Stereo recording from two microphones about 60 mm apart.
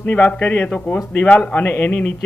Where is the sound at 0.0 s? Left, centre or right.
Left.